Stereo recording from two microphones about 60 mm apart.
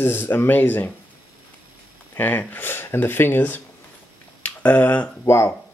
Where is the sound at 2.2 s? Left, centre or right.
Left.